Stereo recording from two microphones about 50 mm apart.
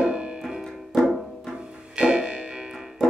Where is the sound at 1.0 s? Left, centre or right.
Centre.